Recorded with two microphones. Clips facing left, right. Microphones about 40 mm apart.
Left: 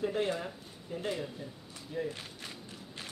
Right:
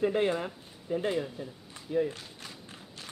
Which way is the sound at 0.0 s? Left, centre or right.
Right.